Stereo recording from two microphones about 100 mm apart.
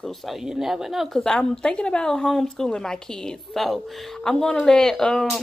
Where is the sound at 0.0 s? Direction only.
Centre (ahead or behind).